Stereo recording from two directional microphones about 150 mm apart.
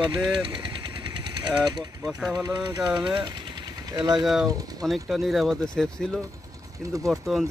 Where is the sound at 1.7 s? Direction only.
25° right (ahead or behind).